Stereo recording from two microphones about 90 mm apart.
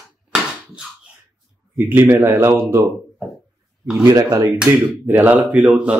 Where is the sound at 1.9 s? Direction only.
25° right (ahead or behind).